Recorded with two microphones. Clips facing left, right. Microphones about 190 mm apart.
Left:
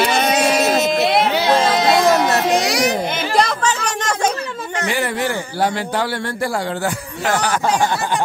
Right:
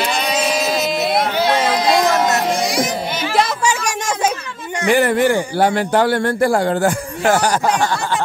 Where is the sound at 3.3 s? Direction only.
5° right (ahead or behind).